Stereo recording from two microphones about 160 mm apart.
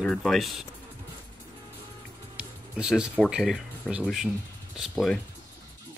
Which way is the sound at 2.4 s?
5° right (ahead or behind).